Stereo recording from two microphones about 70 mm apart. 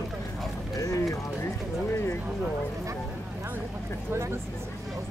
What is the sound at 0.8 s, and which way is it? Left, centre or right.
Clip-clop, left.